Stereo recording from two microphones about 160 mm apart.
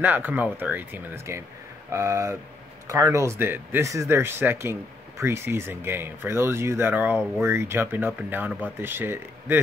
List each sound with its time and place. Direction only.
0.0 s speech: 10° right (ahead or behind)